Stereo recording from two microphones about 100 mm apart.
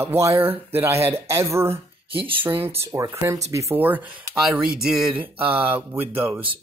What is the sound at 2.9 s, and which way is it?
Speech, 30° right (ahead or behind).